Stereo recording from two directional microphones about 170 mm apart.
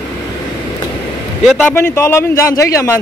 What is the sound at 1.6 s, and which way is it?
A man's voice, 10° left (ahead or behind).